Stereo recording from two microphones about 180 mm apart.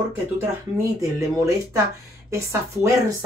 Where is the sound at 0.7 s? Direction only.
15° right (ahead or behind).